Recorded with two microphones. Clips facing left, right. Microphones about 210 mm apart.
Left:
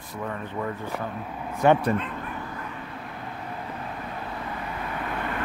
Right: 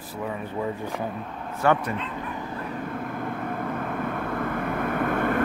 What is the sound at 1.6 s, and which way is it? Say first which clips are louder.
Speech: left 2 dB; 20° left (ahead or behind).